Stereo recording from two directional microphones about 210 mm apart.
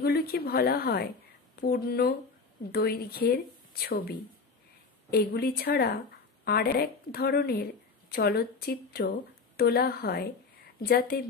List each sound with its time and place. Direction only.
0.0 s speech: 50° left (ahead or behind)
5.1 s a woman's voice: 50° left (ahead or behind)